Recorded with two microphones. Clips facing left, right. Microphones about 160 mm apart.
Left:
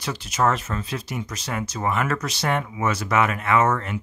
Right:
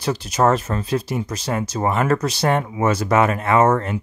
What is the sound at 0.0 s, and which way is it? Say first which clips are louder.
Speech: right 5 dB; 35° right (ahead or behind).